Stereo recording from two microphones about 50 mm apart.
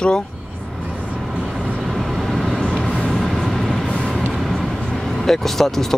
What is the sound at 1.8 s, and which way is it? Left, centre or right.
Vehicle, centre.